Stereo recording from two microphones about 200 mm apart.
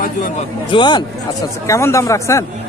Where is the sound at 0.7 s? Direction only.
20° left (ahead or behind).